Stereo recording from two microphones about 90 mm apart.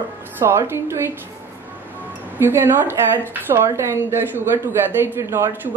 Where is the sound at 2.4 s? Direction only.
25° right (ahead or behind).